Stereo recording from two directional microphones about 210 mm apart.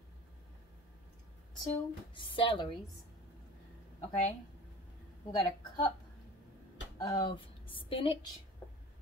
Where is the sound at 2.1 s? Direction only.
25° left (ahead or behind).